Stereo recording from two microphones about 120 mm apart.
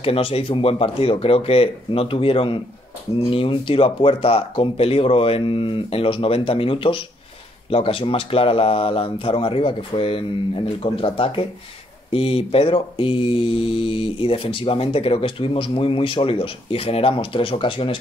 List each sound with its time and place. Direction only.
0.0 s speech: 55° left (ahead or behind)